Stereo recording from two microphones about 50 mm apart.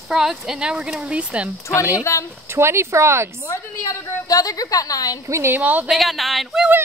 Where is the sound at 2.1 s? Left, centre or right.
Left.